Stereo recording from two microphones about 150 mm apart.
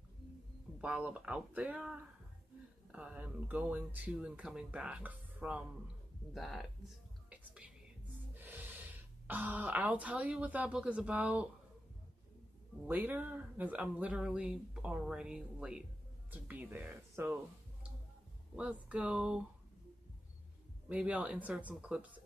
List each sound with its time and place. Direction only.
0.7 s speech: 5° right (ahead or behind)
7.2 s whispering: 10° right (ahead or behind)
8.4 s speech: 10° right (ahead or behind)
12.8 s speech: 10° right (ahead or behind)
18.6 s speech: 5° right (ahead or behind)
20.9 s speech: 10° right (ahead or behind)